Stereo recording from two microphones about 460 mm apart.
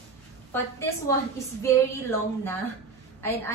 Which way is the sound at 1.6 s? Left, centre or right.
Centre.